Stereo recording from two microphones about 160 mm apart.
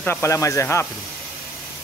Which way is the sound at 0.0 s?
15° left (ahead or behind).